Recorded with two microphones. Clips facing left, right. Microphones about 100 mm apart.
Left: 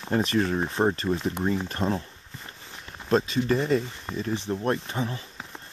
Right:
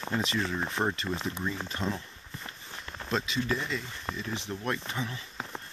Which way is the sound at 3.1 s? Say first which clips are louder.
Left 8 dB; 40° left (ahead or behind).